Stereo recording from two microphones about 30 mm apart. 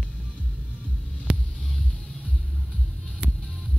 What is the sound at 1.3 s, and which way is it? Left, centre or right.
Hum, right.